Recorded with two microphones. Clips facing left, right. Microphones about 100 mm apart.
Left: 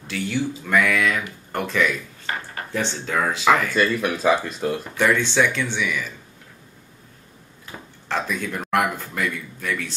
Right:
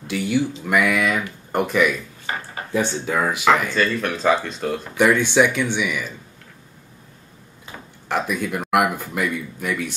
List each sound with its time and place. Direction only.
0.0 s speech: 15° right (ahead or behind)
3.7 s speech: 10° left (ahead or behind)
4.9 s speech: 15° right (ahead or behind)
8.1 s speech: 15° right (ahead or behind)